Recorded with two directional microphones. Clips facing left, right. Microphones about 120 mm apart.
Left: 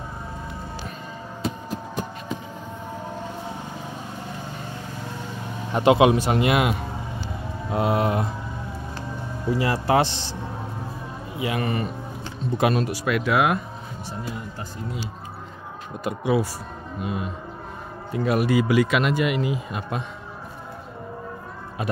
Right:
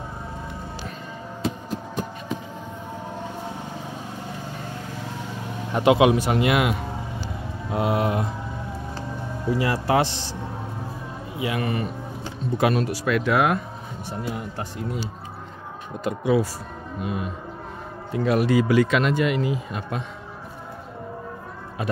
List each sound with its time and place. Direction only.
5.8 s speech: 30° left (ahead or behind)
9.6 s speech: 30° left (ahead or behind)
11.4 s speech: 35° left (ahead or behind)
12.5 s speech: 20° left (ahead or behind)
16.0 s speech: 10° left (ahead or behind)
18.1 s speech: 5° left (ahead or behind)